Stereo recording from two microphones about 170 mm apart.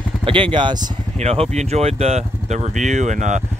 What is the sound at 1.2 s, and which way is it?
Speech, 40° right (ahead or behind).